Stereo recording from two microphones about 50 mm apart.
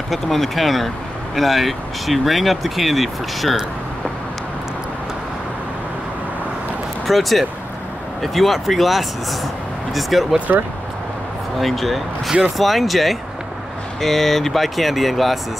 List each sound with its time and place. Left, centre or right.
0.1 s speech: centre
7.1 s speech: centre
10.5 s speech: right
11.6 s speech: centre